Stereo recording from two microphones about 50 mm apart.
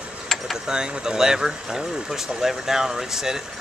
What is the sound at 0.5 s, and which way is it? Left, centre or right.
Speech, centre.